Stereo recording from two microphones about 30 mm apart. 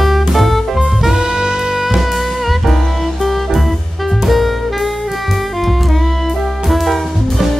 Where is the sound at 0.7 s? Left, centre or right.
Centre.